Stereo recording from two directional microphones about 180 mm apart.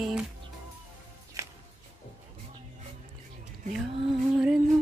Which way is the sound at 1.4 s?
15° right (ahead or behind).